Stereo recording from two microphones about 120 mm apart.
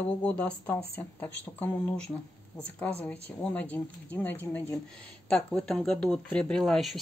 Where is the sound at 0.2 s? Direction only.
10° left (ahead or behind).